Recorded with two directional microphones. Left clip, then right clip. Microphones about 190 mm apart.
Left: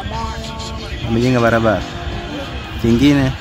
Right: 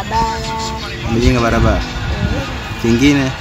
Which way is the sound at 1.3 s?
35° left (ahead or behind).